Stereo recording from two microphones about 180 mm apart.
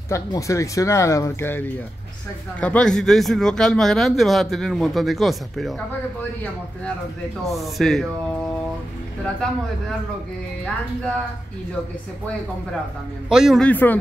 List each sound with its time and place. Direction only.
0.1 s a man's voice: 15° left (ahead or behind); by 5.8 s centre (ahead or behind)
7.4 s a man's voice: centre (ahead or behind)
13.3 s a man's voice: centre (ahead or behind)
13.7 s speech: 10° left (ahead or behind)